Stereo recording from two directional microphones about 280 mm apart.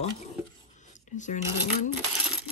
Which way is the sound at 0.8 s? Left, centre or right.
Left.